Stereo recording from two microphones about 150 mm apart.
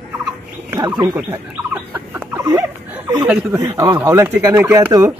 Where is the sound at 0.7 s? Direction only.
25° right (ahead or behind).